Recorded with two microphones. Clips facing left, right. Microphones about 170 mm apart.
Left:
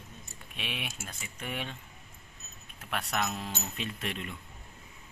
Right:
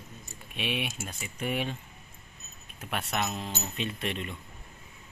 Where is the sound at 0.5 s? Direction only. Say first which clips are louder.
Right 7 dB; 5° right (ahead or behind).